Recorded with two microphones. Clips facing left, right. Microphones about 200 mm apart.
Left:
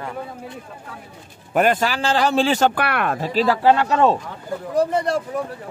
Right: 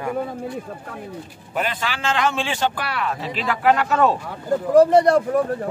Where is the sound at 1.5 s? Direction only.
50° left (ahead or behind); by 4.1 s 25° left (ahead or behind).